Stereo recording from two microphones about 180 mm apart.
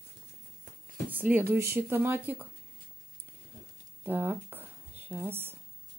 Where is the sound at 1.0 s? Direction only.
10° right (ahead or behind).